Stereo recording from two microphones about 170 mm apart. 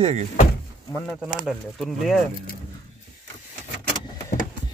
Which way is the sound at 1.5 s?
Centre (ahead or behind).